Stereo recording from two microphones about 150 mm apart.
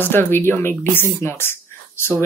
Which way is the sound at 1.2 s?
15° left (ahead or behind).